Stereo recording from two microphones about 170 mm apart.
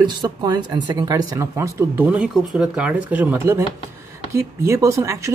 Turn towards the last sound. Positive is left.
turn(degrees=-15)  # may be behind; listen again after turning